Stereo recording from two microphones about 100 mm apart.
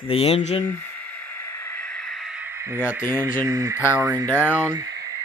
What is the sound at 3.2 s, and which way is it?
Speech, 30° right (ahead or behind).